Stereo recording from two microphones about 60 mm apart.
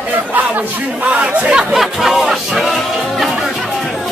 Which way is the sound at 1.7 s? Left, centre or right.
Centre.